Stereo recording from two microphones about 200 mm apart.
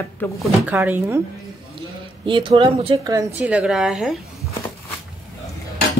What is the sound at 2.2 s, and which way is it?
Speech, 25° right (ahead or behind).